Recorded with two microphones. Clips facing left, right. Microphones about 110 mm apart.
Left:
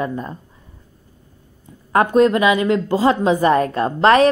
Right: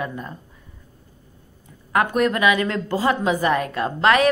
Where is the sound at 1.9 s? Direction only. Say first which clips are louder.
Left 6 dB; 30° left (ahead or behind).